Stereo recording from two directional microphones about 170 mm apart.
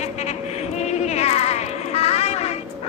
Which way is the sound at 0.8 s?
40° left (ahead or behind).